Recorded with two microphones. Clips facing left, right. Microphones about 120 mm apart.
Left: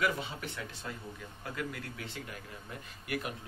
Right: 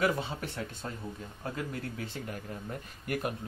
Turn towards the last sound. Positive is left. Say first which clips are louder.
# right 4 dB
turn(degrees=-40)  # may be behind; listen again after turning